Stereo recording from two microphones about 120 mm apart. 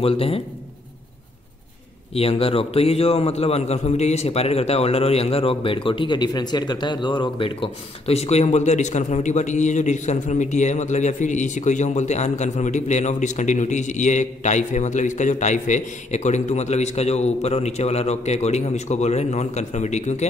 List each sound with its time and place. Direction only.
0.0 s speech: 55° left (ahead or behind)
2.1 s a man's voice: 55° left (ahead or behind); by 20.2 s 70° left (ahead or behind)